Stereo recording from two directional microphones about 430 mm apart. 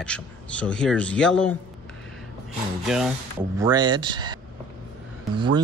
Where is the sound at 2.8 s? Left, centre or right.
Centre.